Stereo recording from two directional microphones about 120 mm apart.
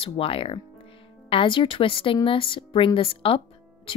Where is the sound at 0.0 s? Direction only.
50° left (ahead or behind).